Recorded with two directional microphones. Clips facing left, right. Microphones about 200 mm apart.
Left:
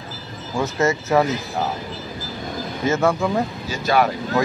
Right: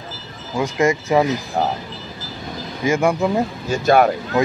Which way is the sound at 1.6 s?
50° right (ahead or behind).